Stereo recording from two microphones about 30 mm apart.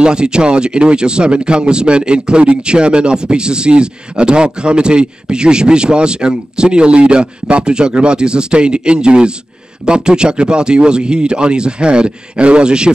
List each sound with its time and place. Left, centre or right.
0.0 s speech: right